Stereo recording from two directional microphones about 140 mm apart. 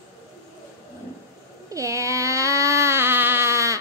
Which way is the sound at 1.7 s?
20° right (ahead or behind).